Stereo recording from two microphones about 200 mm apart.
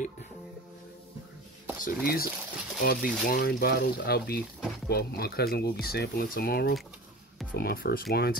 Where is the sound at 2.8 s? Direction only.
45° left (ahead or behind).